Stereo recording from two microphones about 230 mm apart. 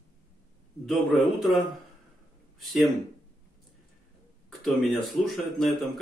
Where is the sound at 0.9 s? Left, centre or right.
Centre.